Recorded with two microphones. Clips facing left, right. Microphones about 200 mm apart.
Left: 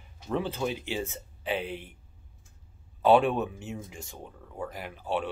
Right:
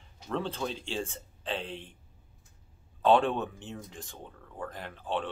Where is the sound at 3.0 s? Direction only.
10° left (ahead or behind).